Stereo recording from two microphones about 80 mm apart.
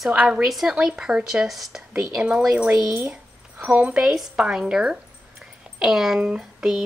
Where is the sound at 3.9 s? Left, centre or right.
Centre.